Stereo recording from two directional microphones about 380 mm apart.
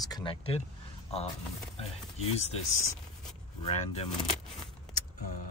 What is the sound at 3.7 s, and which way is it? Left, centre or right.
Speech, centre.